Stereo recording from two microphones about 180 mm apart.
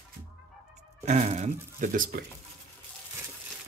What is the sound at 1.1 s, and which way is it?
Speech, 40° right (ahead or behind).